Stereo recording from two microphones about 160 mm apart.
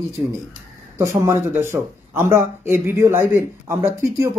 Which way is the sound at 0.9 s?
15° right (ahead or behind).